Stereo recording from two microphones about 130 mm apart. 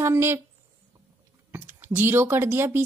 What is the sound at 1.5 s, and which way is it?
Speech, 15° right (ahead or behind).